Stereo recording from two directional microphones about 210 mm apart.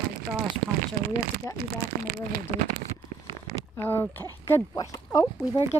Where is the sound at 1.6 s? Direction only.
50° right (ahead or behind).